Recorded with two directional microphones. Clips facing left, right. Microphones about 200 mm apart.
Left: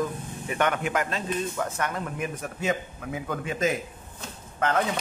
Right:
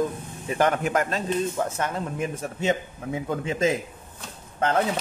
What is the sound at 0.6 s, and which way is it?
Speech, 35° right (ahead or behind).